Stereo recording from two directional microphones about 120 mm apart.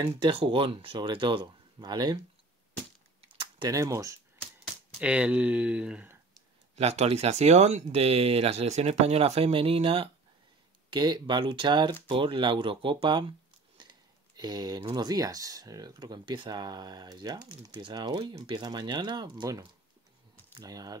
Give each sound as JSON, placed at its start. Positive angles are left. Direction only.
{"t": 0.0, "sound": "speech", "side_deg": -45}
{"t": 3.2, "sound": "typing", "side_deg": -40}
{"t": 3.7, "sound": "speech", "side_deg": -25}
{"t": 5.0, "sound": "speech", "side_deg": -10}
{"t": 6.7, "sound": "speech", "side_deg": -65}
{"t": 10.9, "sound": "speech", "side_deg": -35}